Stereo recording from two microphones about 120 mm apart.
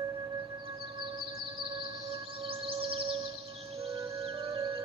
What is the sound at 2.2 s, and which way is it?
Music, 50° right (ahead or behind).